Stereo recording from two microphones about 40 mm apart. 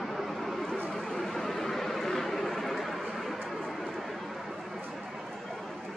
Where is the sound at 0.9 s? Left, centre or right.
Centre.